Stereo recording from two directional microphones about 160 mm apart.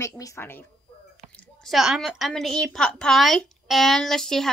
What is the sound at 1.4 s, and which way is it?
A woman's voice, centre (ahead or behind).